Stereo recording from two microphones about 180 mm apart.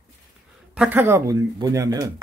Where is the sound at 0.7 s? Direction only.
10° right (ahead or behind).